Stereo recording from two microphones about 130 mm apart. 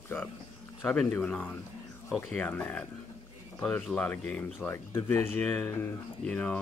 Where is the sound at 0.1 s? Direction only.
15° left (ahead or behind).